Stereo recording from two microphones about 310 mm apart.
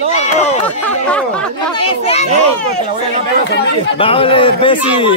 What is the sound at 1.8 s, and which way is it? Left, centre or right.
Speech, centre.